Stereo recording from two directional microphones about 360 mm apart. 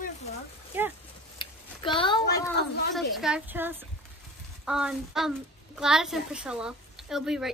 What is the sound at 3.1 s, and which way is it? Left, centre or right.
A woman's voice, centre.